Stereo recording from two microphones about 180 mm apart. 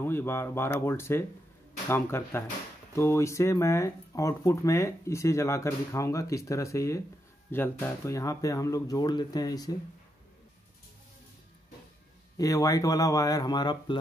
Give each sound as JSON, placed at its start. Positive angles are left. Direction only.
{"t": 0.0, "sound": "speech", "side_deg": 15}
{"t": 12.4, "sound": "speech", "side_deg": 20}